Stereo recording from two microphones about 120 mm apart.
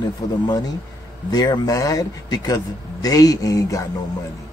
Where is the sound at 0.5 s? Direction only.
35° left (ahead or behind).